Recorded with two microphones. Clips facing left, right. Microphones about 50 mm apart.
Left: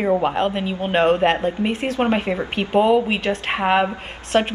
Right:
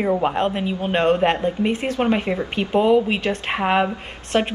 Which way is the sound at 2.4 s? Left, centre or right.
Centre.